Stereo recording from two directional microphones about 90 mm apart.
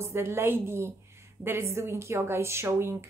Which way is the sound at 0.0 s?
30° right (ahead or behind).